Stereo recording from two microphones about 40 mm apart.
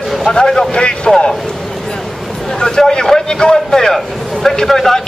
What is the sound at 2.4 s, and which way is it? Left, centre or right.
A man's voice, centre.